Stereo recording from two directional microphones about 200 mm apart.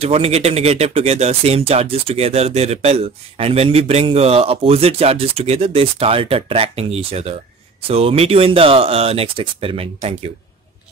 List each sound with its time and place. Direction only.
0.0 s speech: 30° right (ahead or behind)